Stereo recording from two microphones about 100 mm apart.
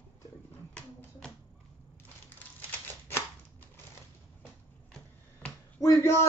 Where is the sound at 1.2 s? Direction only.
10° left (ahead or behind).